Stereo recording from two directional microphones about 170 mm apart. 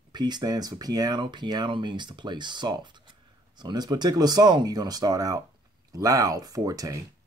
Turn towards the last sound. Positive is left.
turn(degrees=-20)  # may be behind; listen again after turning